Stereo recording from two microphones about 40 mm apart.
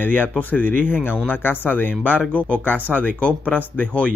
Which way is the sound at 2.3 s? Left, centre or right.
Left.